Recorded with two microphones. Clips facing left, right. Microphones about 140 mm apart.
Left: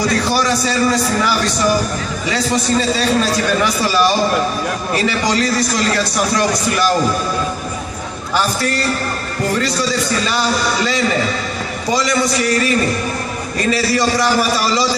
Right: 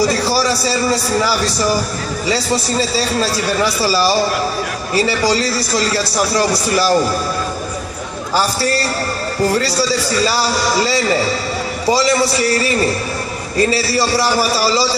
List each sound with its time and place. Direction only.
0.0 s a man's voice: 35° right (ahead or behind)
8.4 s a man's voice: 35° right (ahead or behind)